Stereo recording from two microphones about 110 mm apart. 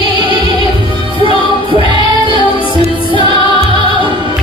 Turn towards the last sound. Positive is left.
turn(degrees=-50)  # may be behind; listen again after turning